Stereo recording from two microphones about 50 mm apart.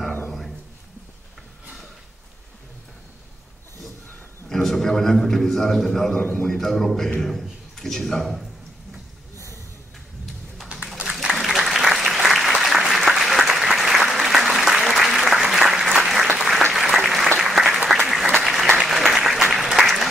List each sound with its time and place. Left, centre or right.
4.5 s a man's voice: centre
10.7 s a sound: right
11.3 s applause: centre